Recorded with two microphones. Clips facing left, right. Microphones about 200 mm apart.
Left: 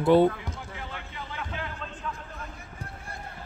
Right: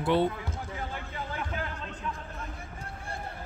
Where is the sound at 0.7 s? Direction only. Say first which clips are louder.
Right 3 dB; 40° right (ahead or behind).